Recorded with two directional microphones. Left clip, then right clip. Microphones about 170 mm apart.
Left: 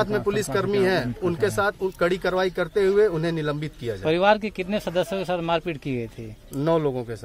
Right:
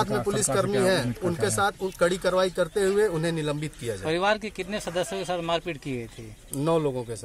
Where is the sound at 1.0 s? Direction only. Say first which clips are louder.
Left 3 dB; 5° left (ahead or behind).